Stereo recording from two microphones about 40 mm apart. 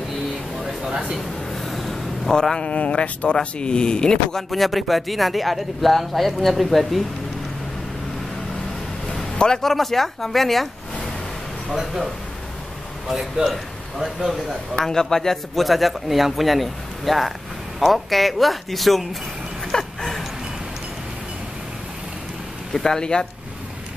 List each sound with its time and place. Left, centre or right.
0.8 s speech: right
1.5 s a sound: centre
2.6 s speech: left; by 7.0 s centre
9.1 s a sound: centre
9.7 s speech: centre
11.7 s a man's voice: centre
13.1 s a man's voice: centre
14.8 s a man's voice: centre
15.6 s speech: centre
20.0 s dog: centre
22.8 s speech: centre